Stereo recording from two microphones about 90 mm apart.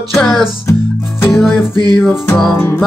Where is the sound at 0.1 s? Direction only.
5° left (ahead or behind).